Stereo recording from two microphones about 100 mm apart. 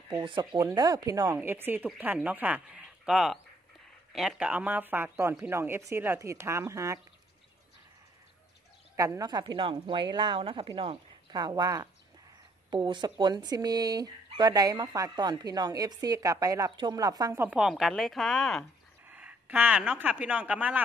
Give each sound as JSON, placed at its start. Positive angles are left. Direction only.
{"t": 0.2, "sound": "a woman's voice", "side_deg": -55}
{"t": 0.7, "sound": "speech", "side_deg": -40}
{"t": 1.4, "sound": "speech", "side_deg": -20}
{"t": 4.4, "sound": "speech", "side_deg": -15}
{"t": 8.9, "sound": "a woman's voice", "side_deg": -35}
{"t": 11.3, "sound": "speech", "side_deg": -45}
{"t": 12.7, "sound": "speech", "side_deg": -50}
{"t": 17.4, "sound": "speech", "side_deg": -10}
{"t": 19.0, "sound": "speech", "side_deg": -15}